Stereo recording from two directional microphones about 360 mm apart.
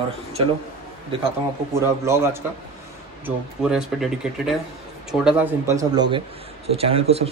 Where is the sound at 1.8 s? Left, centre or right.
Centre.